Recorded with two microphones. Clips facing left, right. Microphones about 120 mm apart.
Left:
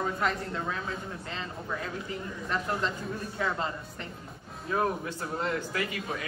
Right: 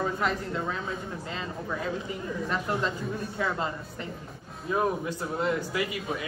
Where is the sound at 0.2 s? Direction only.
5° right (ahead or behind).